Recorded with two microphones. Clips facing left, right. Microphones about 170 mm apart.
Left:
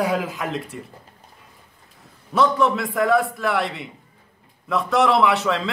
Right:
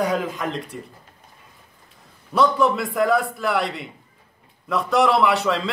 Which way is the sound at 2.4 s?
Centre (ahead or behind).